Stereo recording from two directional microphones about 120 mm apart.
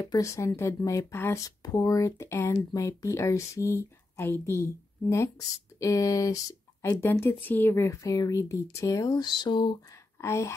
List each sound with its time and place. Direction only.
0.0 s speech: 25° left (ahead or behind)
5.8 s speech: 25° left (ahead or behind)
6.9 s speech: 20° left (ahead or behind); by 9.8 s 40° left (ahead or behind)
10.2 s speech: 25° left (ahead or behind)